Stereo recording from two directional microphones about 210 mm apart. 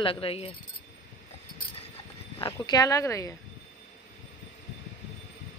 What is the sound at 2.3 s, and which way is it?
Speech, 20° left (ahead or behind).